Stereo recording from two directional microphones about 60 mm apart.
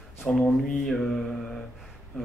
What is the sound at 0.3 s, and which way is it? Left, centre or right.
Speech, centre.